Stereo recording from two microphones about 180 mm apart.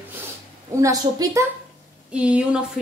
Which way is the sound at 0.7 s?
15° right (ahead or behind).